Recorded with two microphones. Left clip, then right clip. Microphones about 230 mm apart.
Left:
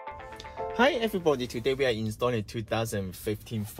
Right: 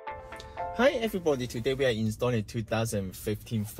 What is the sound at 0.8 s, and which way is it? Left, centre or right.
Speech, left.